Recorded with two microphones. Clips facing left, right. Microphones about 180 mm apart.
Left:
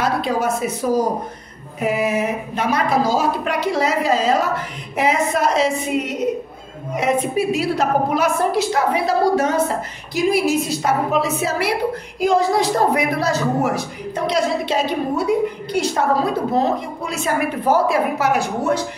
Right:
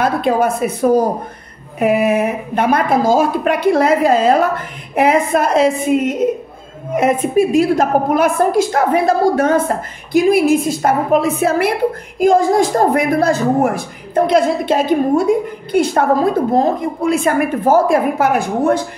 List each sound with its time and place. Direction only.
0.0 s a woman's voice: 55° right (ahead or behind)